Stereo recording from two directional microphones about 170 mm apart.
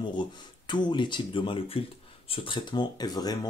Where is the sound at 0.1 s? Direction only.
25° left (ahead or behind).